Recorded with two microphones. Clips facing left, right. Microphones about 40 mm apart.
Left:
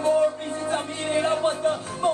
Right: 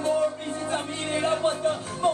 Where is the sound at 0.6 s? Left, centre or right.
Centre.